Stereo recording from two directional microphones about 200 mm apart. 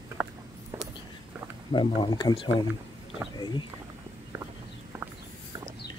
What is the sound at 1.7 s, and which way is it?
Speech, 25° left (ahead or behind).